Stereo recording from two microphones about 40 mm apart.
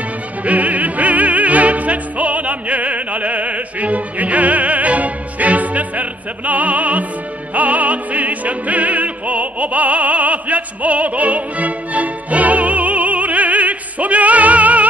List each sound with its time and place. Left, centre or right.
0.5 s opera: right